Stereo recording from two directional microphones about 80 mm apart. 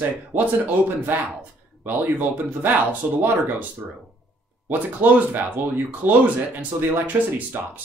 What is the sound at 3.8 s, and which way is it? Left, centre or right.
Speech, right.